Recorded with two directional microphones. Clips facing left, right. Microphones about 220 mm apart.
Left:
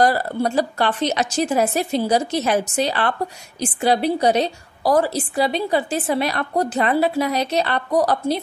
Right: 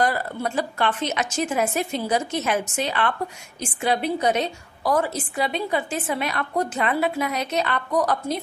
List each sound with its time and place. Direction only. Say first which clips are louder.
0.0 s a woman's voice: left 5 dB; 35° left (ahead or behind)